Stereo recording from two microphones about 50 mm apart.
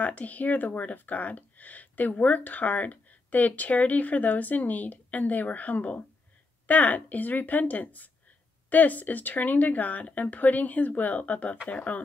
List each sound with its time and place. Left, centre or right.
0.0 s speech: left